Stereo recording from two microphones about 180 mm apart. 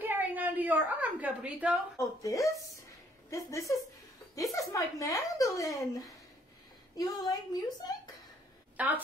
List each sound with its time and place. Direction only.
0.0 s a woman's voice: 10° right (ahead or behind)
2.0 s a woman's voice: 20° left (ahead or behind)
8.7 s a woman's voice: 10° right (ahead or behind)